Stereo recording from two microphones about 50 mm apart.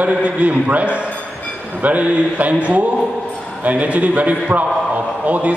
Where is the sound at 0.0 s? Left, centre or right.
Right.